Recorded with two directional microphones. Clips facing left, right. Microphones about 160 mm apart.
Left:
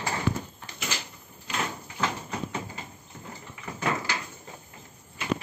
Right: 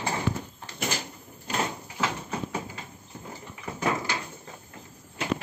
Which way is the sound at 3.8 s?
15° right (ahead or behind).